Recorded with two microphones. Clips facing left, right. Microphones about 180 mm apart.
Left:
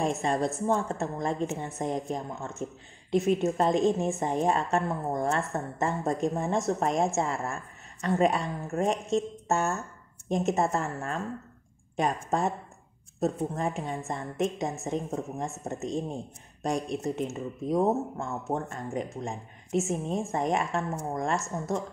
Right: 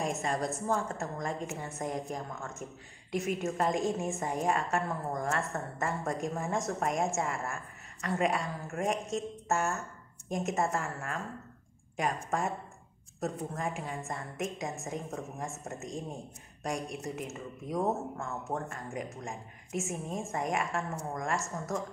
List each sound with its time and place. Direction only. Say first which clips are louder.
0.0 s a woman's voice: left 5 dB; 30° left (ahead or behind)